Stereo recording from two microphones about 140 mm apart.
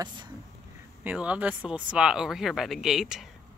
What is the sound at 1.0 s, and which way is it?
Speech, 10° right (ahead or behind).